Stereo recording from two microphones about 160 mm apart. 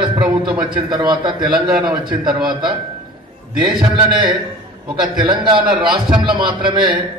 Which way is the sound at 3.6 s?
30° right (ahead or behind).